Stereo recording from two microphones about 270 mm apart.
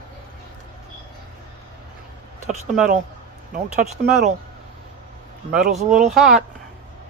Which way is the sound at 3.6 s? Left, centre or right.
Right.